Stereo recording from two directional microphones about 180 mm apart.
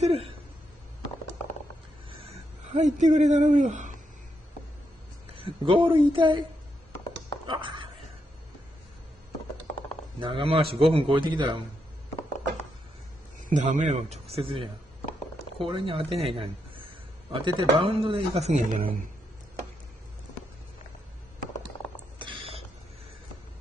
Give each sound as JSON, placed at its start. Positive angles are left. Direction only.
{"t": 0.0, "sound": "a sound", "side_deg": -35}
{"t": 2.7, "sound": "speech", "side_deg": -40}
{"t": 5.3, "sound": "speech", "side_deg": -30}
{"t": 7.4, "sound": "a sound", "side_deg": -25}
{"t": 10.2, "sound": "a man's voice", "side_deg": -30}
{"t": 13.5, "sound": "speech", "side_deg": -45}
{"t": 22.2, "sound": "mechanisms", "side_deg": -30}